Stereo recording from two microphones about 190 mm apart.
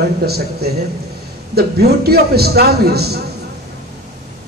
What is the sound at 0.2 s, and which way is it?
A man's voice, 55° right (ahead or behind).